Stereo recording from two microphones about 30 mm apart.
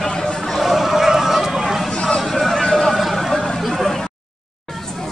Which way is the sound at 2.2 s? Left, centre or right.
Centre.